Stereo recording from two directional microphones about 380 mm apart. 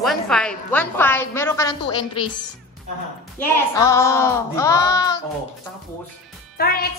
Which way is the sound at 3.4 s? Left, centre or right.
Centre.